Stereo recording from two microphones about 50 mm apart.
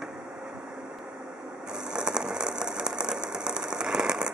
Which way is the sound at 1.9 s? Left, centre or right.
Centre.